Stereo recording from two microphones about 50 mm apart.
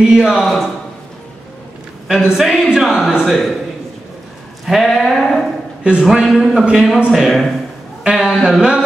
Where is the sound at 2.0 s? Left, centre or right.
Centre.